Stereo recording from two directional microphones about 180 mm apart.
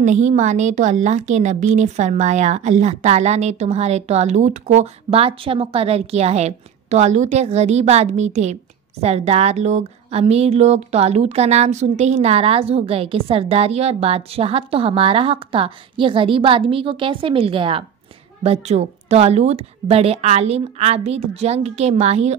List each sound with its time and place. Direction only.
0.0 s a woman's voice: 40° right (ahead or behind)